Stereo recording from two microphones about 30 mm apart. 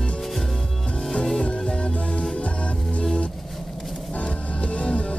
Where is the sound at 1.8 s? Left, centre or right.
Left.